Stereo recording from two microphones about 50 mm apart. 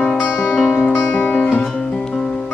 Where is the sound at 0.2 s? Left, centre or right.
Centre.